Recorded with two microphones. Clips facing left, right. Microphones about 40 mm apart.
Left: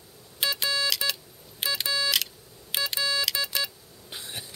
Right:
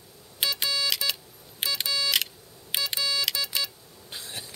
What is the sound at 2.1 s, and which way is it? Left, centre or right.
Camera, centre.